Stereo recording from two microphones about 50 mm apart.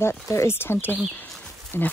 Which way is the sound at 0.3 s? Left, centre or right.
Left.